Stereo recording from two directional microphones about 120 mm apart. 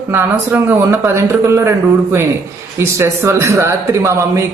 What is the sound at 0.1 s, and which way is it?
Speech, 20° right (ahead or behind).